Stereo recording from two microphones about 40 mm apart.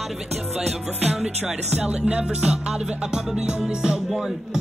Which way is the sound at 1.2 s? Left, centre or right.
Right.